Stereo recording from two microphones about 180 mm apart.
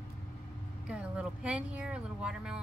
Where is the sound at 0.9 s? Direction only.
5° right (ahead or behind).